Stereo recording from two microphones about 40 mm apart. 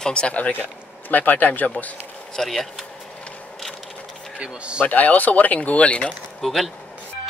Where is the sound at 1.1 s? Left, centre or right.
Left.